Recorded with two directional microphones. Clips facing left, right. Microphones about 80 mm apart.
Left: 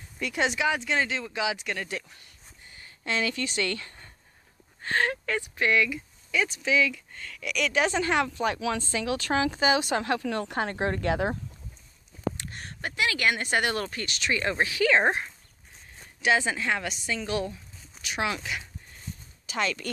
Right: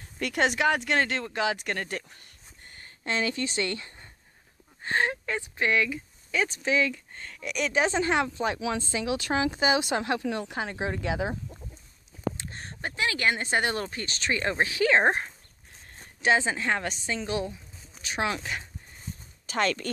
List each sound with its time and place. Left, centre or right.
0.2 s speech: right
3.1 s speech: right
10.4 s speech: centre
12.4 s a woman's voice: right